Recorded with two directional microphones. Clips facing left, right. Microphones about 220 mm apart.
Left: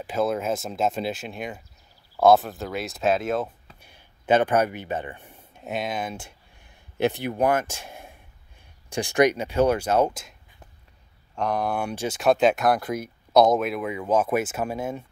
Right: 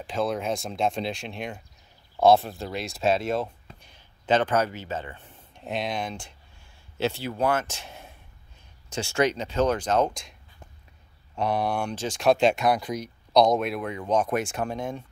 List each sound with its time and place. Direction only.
0.0 s speech: 5° left (ahead or behind)
7.0 s speech: 15° left (ahead or behind)
11.3 s speech: 5° right (ahead or behind)
12.8 s speech: 55° left (ahead or behind)
13.3 s speech: 5° left (ahead or behind)